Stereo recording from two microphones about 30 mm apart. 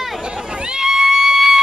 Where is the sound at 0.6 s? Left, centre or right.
Right.